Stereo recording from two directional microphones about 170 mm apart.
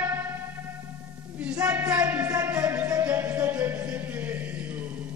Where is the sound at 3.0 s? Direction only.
10° right (ahead or behind).